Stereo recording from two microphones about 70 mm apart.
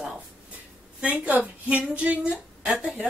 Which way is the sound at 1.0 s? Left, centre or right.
Centre.